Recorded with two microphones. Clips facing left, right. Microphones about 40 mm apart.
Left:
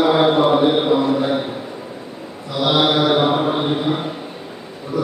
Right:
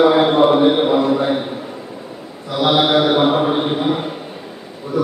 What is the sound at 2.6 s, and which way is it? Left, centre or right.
Mantra, right.